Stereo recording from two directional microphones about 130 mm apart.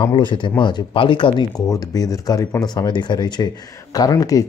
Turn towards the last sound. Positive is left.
turn(degrees=30)  # may be behind; listen again after turning